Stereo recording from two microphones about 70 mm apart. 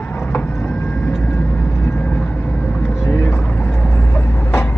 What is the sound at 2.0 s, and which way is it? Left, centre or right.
Vehicle, centre.